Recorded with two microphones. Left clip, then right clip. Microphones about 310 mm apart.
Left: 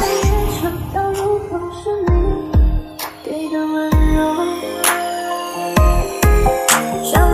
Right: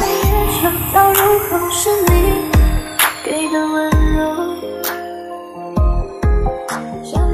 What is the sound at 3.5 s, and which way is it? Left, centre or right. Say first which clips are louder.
Music: right 1 dB; right.